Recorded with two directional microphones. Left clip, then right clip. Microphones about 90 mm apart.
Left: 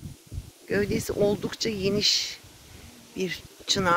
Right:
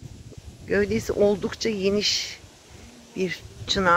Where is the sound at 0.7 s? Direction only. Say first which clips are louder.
Right 3 dB; 45° left (ahead or behind).